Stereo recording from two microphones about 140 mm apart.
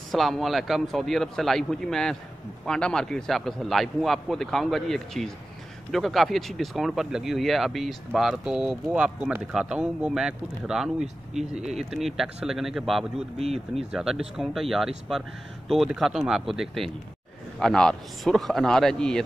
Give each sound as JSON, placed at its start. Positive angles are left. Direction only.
{"t": 0.1, "sound": "speech", "side_deg": 0}
{"t": 13.4, "sound": "speech", "side_deg": -45}
{"t": 13.9, "sound": "speech", "side_deg": -5}